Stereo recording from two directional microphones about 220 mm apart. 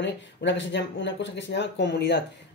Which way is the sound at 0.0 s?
55° left (ahead or behind).